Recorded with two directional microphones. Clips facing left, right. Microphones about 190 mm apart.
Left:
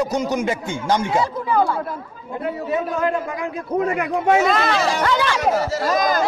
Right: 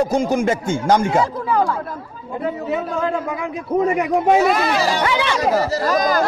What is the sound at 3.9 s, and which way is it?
Speech, 10° right (ahead or behind).